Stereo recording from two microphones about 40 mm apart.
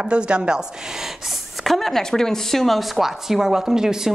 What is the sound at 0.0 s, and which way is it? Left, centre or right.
Speech, right.